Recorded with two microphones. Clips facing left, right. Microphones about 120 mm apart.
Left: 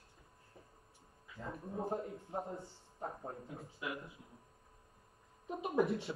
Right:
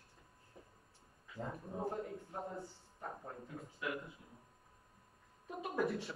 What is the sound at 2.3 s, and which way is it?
A man's voice, 25° left (ahead or behind).